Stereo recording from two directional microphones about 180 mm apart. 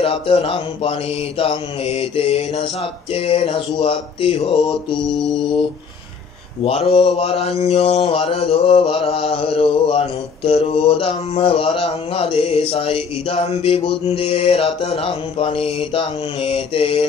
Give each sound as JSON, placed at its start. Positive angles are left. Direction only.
{"t": 0.0, "sound": "mantra", "side_deg": 30}
{"t": 6.6, "sound": "mantra", "side_deg": 35}